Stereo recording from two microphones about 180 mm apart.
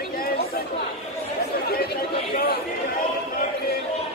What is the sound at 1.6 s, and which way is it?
Chatter, 60° left (ahead or behind).